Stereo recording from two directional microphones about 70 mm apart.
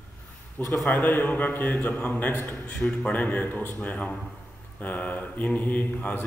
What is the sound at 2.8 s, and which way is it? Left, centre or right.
A man's voice, centre.